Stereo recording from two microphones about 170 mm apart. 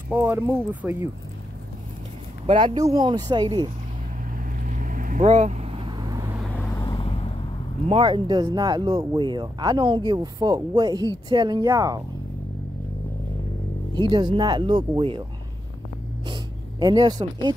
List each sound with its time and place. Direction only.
0.1 s speech: 10° right (ahead or behind)
2.4 s speech: 30° right (ahead or behind)
4.3 s vehicle: 50° right (ahead or behind); by 6.3 s 25° right (ahead or behind)
6.6 s vehicle: 25° left (ahead or behind)
7.9 s speech: 25° right (ahead or behind)
13.9 s speech: 25° right (ahead or behind)
16.8 s speech: 25° right (ahead or behind)